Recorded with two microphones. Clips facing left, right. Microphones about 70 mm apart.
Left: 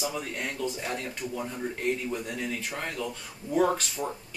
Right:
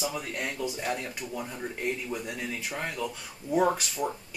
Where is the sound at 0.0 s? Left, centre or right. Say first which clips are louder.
Even; centre.